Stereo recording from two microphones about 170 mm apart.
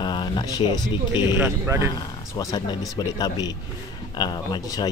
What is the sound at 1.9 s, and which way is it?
Speech, 20° left (ahead or behind).